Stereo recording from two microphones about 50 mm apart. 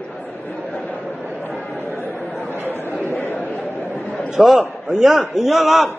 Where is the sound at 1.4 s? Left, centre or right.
Left.